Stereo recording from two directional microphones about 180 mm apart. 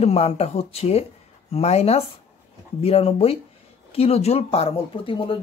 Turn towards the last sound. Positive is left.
turn(degrees=30)  # may be behind; listen again after turning